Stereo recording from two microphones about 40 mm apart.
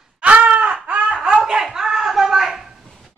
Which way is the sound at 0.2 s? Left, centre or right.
Right.